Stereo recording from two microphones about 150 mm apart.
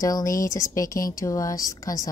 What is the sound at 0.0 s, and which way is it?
Speech, 25° left (ahead or behind).